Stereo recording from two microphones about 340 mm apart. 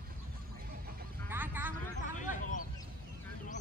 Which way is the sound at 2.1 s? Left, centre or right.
Left.